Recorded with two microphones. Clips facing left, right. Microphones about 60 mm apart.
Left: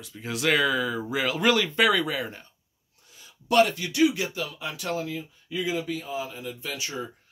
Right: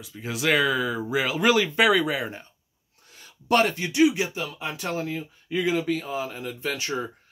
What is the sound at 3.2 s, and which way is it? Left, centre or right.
Speech, right.